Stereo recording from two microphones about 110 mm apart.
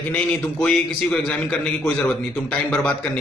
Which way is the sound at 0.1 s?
10° left (ahead or behind).